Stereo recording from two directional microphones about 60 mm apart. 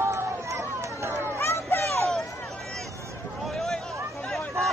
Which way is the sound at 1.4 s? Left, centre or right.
Left.